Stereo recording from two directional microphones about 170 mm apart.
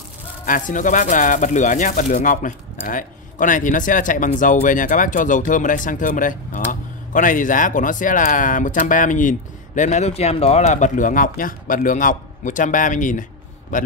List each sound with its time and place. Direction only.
0.5 s speech: 50° left (ahead or behind)